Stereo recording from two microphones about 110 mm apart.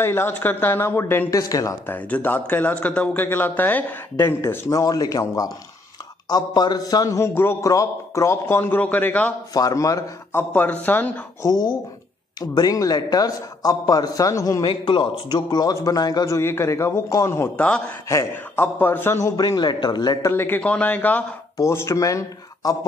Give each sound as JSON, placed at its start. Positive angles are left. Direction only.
{"t": 0.0, "sound": "a man's voice", "side_deg": 20}
{"t": 1.9, "sound": "a man's voice", "side_deg": 15}
{"t": 9.5, "sound": "a man's voice", "side_deg": 30}
{"t": 10.5, "sound": "speech", "side_deg": 15}
{"t": 11.4, "sound": "a man's voice", "side_deg": 40}
{"t": 14.7, "sound": "a man's voice", "side_deg": 45}
{"t": 17.6, "sound": "speech", "side_deg": 10}
{"t": 18.0, "sound": "a man's voice", "side_deg": 25}
{"t": 20.2, "sound": "speech", "side_deg": 20}
{"t": 21.5, "sound": "a man's voice", "side_deg": 25}